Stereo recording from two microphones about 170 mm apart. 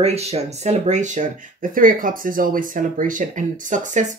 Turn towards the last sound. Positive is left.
turn(degrees=-45)  # may be behind; listen again after turning